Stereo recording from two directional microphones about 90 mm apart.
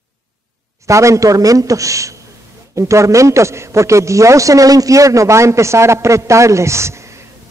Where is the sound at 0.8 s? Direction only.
35° right (ahead or behind).